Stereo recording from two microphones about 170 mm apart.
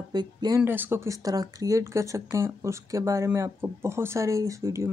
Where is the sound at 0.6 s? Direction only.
10° right (ahead or behind).